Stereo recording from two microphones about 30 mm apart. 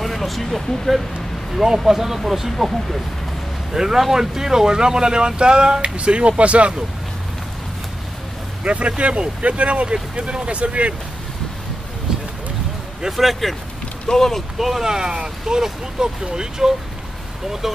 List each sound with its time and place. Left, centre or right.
0.0 s speech: centre
1.9 s speech: centre
3.7 s speech: centre
5.8 s speech: right
8.6 s speech: right
13.1 s speech: centre
14.1 s speech: centre
14.6 s speech: centre
14.9 s speech: right; by 17.7 s centre